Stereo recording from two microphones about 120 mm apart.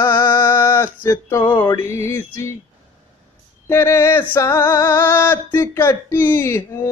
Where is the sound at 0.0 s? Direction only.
20° left (ahead or behind).